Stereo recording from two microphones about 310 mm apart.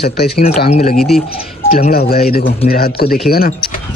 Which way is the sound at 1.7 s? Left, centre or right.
Left.